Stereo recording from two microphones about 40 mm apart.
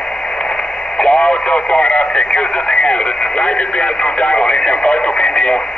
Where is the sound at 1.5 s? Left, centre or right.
Left.